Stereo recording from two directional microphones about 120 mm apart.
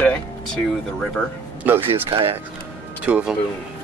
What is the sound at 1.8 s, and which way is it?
Speech, 45° right (ahead or behind).